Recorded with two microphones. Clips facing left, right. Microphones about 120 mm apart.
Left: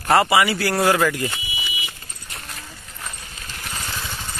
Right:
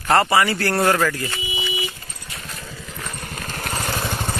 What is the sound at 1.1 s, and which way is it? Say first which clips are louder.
Speech: left 2 dB; 20° left (ahead or behind).